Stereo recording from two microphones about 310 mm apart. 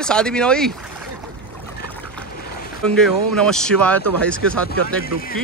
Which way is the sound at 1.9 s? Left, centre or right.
Centre.